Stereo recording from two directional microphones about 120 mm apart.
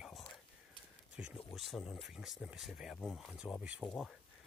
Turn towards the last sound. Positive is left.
turn(degrees=0)  # may be behind; listen again after turning